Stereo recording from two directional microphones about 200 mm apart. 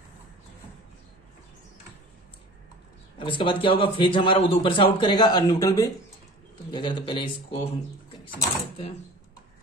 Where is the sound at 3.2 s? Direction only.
25° left (ahead or behind).